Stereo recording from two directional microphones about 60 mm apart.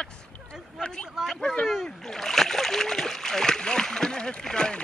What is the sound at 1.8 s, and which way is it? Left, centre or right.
Splash, centre.